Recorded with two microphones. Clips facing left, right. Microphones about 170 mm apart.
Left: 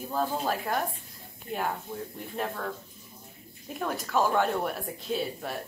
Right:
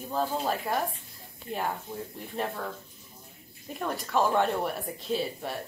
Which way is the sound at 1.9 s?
15° right (ahead or behind).